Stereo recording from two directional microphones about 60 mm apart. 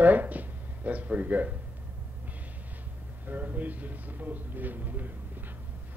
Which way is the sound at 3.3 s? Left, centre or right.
Right.